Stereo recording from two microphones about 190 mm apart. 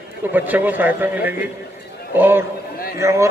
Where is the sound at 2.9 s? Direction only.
15° right (ahead or behind).